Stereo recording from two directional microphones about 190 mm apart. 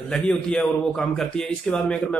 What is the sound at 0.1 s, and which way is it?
A man's voice, 5° left (ahead or behind).